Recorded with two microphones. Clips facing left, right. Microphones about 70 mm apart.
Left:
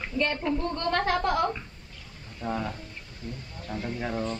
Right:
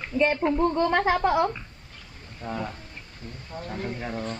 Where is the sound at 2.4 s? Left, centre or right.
Centre.